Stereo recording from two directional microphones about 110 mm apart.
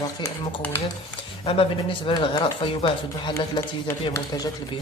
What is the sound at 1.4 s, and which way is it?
Speech, 55° left (ahead or behind).